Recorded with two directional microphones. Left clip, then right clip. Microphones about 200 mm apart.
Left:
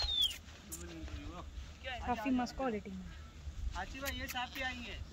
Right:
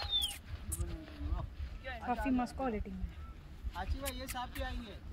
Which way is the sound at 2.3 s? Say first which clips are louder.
Even; 10° right (ahead or behind).